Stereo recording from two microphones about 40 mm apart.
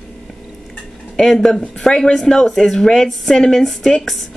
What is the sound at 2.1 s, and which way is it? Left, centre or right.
A woman's voice, centre.